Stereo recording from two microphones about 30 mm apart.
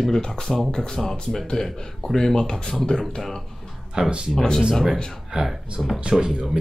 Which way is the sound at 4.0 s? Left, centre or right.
Right.